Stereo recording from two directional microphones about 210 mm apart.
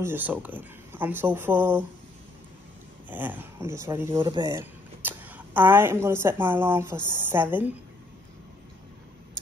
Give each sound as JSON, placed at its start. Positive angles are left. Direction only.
{"t": 0.0, "sound": "speech", "side_deg": -10}
{"t": 3.1, "sound": "speech", "side_deg": -10}